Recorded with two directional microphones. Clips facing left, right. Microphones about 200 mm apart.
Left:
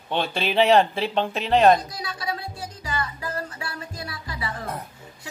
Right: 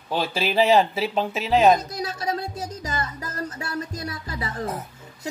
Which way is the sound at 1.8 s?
40° right (ahead or behind).